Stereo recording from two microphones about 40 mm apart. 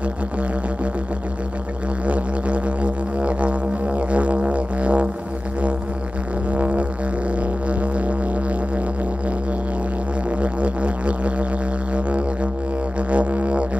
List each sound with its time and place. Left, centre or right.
2.0 s music: right
6.5 s music: right
10.4 s music: right
13.1 s music: right